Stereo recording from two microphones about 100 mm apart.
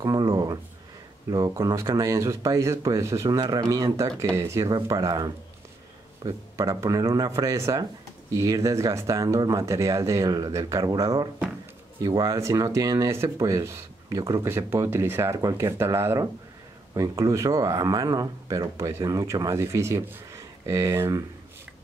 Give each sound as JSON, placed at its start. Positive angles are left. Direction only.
{"t": 0.0, "sound": "speech", "side_deg": -40}
{"t": 1.5, "sound": "speech", "side_deg": -35}
{"t": 4.6, "sound": "speech", "side_deg": -40}
{"t": 6.5, "sound": "speech", "side_deg": -35}